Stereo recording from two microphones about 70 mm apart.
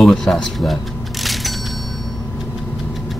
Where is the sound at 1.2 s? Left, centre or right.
Centre.